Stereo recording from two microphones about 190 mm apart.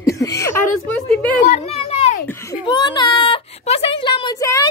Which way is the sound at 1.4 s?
35° left (ahead or behind).